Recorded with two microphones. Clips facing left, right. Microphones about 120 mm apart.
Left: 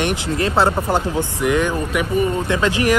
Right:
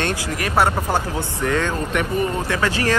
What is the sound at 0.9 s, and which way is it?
Speech, 15° left (ahead or behind).